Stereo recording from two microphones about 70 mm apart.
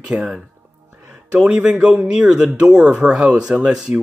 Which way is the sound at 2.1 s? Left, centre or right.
Centre.